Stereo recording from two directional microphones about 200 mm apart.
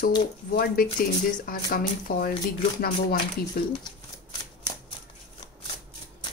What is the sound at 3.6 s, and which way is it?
Speech, 50° left (ahead or behind).